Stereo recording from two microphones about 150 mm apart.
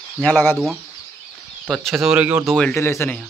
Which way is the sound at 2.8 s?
15° left (ahead or behind).